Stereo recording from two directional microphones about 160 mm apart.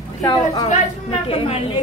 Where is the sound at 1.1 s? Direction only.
35° left (ahead or behind).